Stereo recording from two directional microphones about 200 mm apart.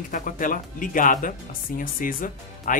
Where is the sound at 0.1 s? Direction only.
40° left (ahead or behind).